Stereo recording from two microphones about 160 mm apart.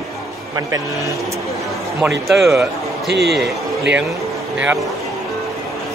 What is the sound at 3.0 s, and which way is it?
Speech, 90° right.